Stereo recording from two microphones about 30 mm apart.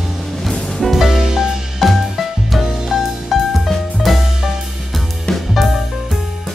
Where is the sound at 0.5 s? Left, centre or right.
Centre.